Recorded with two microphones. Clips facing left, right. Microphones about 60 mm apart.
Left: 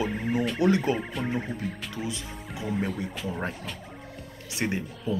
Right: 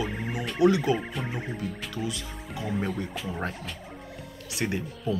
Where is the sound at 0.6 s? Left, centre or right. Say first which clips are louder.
Right 3 dB; left.